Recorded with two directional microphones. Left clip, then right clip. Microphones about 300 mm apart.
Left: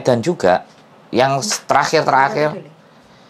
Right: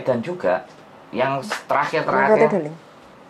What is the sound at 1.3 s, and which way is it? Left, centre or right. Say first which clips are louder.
Speech: left 5 dB; left.